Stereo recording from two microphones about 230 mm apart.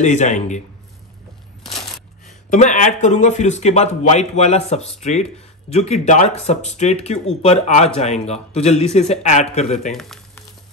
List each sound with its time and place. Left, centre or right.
0.0 s a man's voice: left
2.5 s speech: left
9.8 s a sound: centre